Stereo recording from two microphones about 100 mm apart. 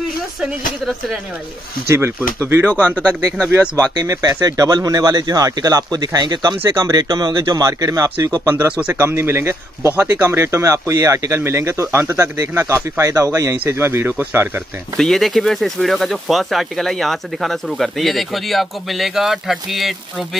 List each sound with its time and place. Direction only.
0.4 s speech: 5° right (ahead or behind)
1.9 s speech: 25° right (ahead or behind)
2.9 s speech: 15° left (ahead or behind)
3.7 s speech: 35° right (ahead or behind)
8.5 s speech: 20° right (ahead or behind)
15.0 s speech: 5° left (ahead or behind)